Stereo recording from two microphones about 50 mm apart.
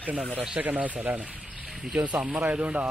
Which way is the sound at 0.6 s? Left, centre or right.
Right.